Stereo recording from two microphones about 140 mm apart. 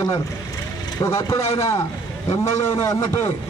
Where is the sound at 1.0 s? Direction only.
20° left (ahead or behind).